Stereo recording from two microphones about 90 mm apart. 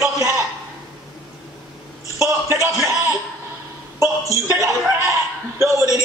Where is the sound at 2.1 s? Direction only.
35° right (ahead or behind).